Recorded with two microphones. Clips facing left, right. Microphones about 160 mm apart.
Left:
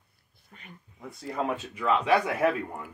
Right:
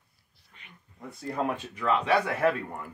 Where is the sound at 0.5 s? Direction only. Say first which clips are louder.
Left 6 dB; 40° left (ahead or behind).